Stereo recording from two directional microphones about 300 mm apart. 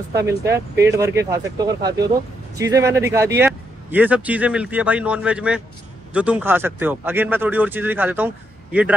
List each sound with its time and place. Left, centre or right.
0.1 s speech: centre